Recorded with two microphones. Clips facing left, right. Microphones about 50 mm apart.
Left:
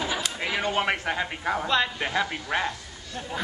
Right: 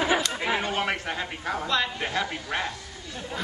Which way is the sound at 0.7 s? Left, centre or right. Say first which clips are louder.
Left 2 dB; centre.